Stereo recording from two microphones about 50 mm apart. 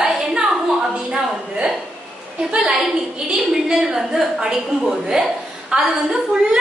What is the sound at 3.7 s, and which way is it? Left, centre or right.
A woman's voice, centre.